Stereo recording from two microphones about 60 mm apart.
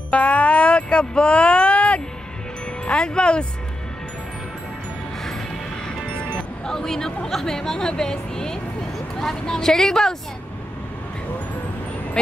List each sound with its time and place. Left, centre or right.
0.1 s speech: left
6.3 s speech: centre